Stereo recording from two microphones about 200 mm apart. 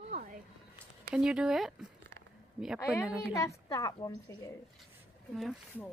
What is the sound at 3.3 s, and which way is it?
A woman's voice, 15° left (ahead or behind).